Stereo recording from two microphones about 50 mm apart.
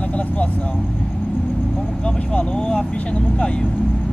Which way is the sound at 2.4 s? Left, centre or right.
Left.